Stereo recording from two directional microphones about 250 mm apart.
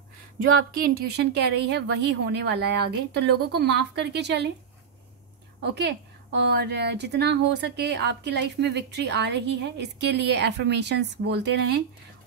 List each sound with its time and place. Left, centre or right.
0.7 s a woman's voice: right
5.6 s a woman's voice: right